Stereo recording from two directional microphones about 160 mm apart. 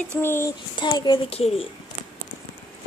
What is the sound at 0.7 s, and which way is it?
Speech, 25° left (ahead or behind).